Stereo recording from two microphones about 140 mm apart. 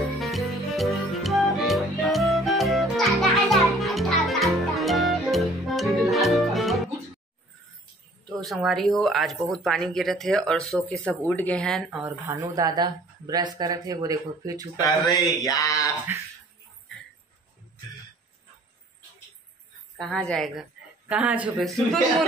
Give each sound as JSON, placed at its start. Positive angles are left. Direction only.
{"t": 0.2, "sound": "music", "side_deg": 0}
{"t": 8.3, "sound": "a sound", "side_deg": 5}
{"t": 8.6, "sound": "speech", "side_deg": 0}
{"t": 12.0, "sound": "speech", "side_deg": -15}
{"t": 12.5, "sound": "speech", "side_deg": -30}
{"t": 14.8, "sound": "speech", "side_deg": 25}
{"t": 16.1, "sound": "speech", "side_deg": -15}
{"t": 20.0, "sound": "speech", "side_deg": 5}